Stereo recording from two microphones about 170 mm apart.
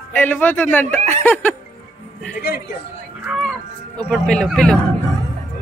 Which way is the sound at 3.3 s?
Centre (ahead or behind).